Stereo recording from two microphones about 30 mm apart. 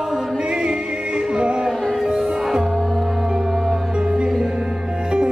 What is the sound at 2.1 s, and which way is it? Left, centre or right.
Music, centre.